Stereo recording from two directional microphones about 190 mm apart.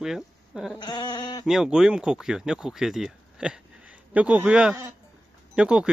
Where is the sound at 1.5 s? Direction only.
5° right (ahead or behind).